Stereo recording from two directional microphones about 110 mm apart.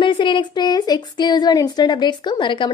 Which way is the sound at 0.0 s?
45° left (ahead or behind).